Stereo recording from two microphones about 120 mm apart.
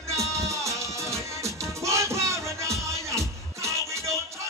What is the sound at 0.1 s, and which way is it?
Music, 25° right (ahead or behind).